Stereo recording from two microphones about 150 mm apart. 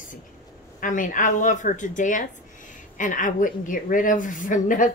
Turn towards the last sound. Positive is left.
turn(degrees=60)  # may be behind; listen again after turning